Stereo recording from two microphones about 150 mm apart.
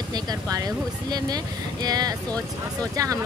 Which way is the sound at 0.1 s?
25° right (ahead or behind).